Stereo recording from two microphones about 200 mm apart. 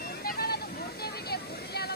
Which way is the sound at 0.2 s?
50° left (ahead or behind).